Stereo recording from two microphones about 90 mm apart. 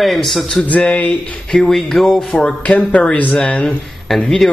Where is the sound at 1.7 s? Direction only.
5° left (ahead or behind).